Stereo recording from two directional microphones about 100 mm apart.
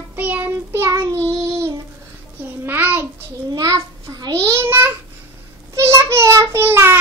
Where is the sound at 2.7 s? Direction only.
20° right (ahead or behind).